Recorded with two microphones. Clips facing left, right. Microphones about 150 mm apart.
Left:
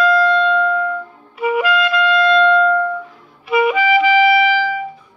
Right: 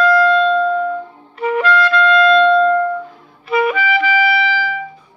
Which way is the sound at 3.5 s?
10° left (ahead or behind).